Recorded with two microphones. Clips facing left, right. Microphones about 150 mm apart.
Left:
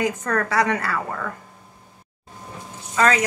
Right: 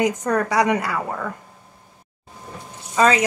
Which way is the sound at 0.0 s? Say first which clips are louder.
Right 3 dB; 20° right (ahead or behind).